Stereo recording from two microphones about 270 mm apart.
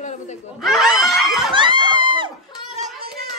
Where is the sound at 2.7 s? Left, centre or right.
Right.